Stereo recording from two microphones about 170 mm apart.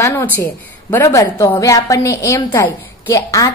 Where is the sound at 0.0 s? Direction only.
15° left (ahead or behind).